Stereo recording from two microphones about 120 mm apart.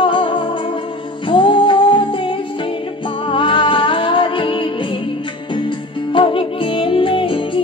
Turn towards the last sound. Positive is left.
turn(degrees=45)  # may be behind; listen again after turning